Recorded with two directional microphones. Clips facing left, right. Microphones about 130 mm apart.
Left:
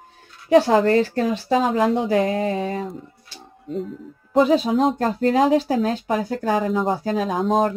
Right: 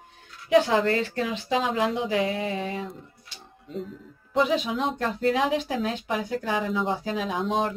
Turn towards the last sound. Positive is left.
turn(degrees=40)  # may be behind; listen again after turning